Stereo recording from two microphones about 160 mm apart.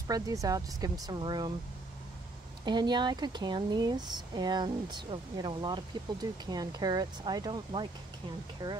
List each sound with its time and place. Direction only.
0.1 s speech: 20° right (ahead or behind)
2.6 s speech: 25° right (ahead or behind)